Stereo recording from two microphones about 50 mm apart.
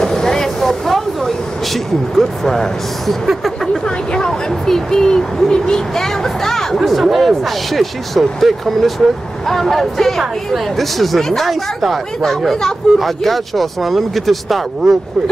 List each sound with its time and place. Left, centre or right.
0.0 s a sound: centre
3.3 s vehicle: centre
3.8 s speech: centre